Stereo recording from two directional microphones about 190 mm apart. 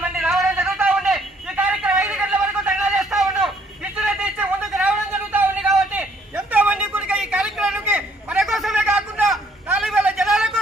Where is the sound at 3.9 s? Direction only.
5° right (ahead or behind).